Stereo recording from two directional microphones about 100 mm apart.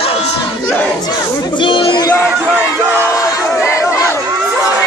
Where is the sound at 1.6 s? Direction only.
55° left (ahead or behind).